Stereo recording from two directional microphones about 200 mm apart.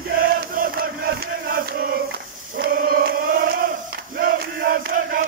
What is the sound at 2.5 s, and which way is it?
Chant, 50° right (ahead or behind).